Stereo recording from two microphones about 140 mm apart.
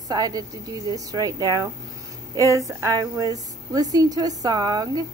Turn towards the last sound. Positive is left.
turn(degrees=-30)  # may be behind; listen again after turning